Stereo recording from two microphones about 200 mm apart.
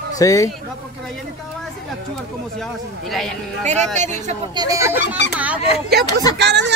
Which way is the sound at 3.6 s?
35° right (ahead or behind).